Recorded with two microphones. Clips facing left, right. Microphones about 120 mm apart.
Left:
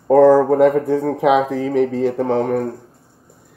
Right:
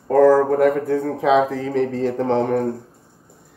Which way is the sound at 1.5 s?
15° left (ahead or behind).